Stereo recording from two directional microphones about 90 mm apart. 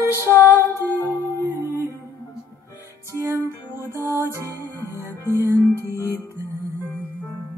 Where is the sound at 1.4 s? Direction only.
25° right (ahead or behind).